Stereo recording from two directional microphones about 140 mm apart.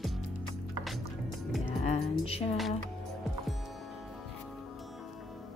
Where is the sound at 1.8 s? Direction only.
45° left (ahead or behind).